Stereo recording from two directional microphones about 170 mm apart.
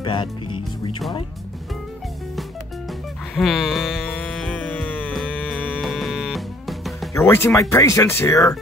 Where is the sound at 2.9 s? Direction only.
Centre (ahead or behind).